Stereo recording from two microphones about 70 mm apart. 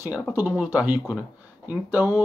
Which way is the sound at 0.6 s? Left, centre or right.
Centre.